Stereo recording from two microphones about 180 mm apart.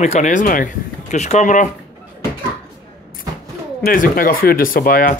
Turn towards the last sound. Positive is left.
turn(degrees=50)  # may be behind; listen again after turning